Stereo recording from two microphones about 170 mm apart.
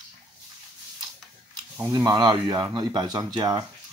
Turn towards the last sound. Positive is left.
turn(degrees=-25)  # may be behind; listen again after turning